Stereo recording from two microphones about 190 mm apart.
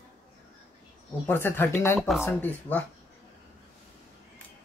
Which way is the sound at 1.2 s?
10° left (ahead or behind).